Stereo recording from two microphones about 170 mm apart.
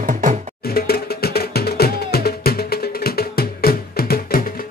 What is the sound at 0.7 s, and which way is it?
Music, 65° left (ahead or behind).